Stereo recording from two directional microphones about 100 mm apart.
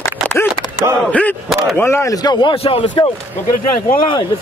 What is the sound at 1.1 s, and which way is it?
Speech, 15° left (ahead or behind).